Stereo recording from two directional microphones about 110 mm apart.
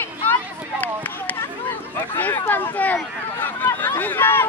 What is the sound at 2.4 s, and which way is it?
Speech, 15° left (ahead or behind).